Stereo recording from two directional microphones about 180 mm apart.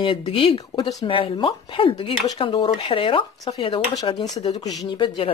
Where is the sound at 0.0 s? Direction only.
30° left (ahead or behind).